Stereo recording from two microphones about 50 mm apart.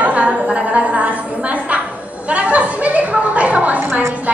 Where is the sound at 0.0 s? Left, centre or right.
Right.